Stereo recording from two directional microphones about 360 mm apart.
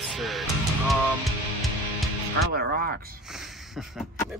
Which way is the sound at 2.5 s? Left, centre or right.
Right.